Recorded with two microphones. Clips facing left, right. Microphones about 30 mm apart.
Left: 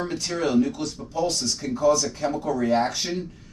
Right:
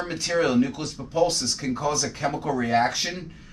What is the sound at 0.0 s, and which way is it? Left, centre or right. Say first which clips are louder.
Speech: right 2 dB; centre.